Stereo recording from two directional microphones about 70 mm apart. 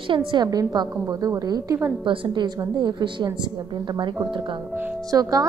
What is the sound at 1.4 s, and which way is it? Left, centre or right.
Speech, right.